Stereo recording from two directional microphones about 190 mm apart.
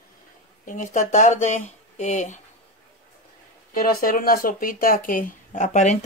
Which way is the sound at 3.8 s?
50° left (ahead or behind).